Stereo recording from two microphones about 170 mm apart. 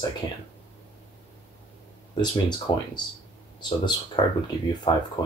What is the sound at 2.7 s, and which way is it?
Speech, 25° left (ahead or behind).